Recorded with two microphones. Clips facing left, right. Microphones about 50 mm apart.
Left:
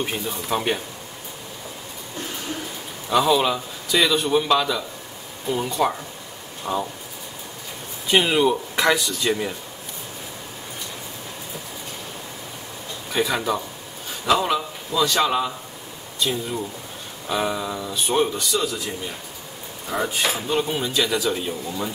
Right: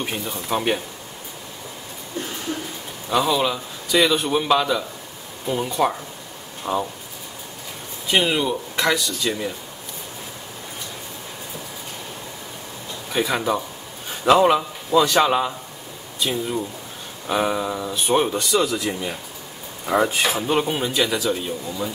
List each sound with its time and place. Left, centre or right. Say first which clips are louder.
0.0 s speech: left 1 dB; centre
3.1 s speech: left 1 dB; centre
4.0 s speech: even; centre
8.1 s speech: left 2 dB; centre
13.1 s speech: right 1 dB; centre
14.2 s speech: right 5 dB; right; by 18.2 s centre
18.5 s speech: right 4 dB; right
20.4 s speech: right 2 dB; right
21.1 s speech: even; centre